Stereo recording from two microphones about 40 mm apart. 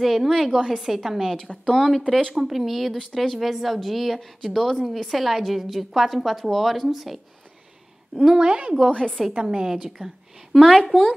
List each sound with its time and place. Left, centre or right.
0.0 s a woman's voice: centre
1.7 s a woman's voice: centre
2.3 s a woman's voice: centre
8.4 s a woman's voice: right
9.7 s a woman's voice: centre
10.5 s a woman's voice: centre